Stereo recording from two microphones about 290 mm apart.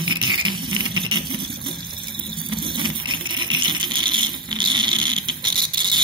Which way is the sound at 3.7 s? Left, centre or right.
Centre.